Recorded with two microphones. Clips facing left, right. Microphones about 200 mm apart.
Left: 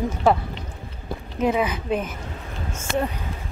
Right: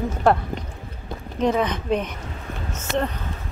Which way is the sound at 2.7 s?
10° left (ahead or behind).